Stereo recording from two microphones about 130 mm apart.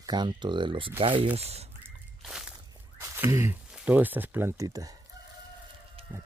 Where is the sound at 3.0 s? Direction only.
20° right (ahead or behind).